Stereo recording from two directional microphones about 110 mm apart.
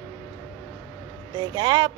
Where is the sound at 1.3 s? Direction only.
40° right (ahead or behind).